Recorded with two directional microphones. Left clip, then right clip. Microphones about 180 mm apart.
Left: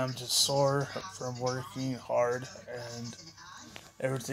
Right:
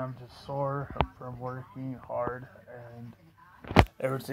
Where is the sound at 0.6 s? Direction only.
25° left (ahead or behind).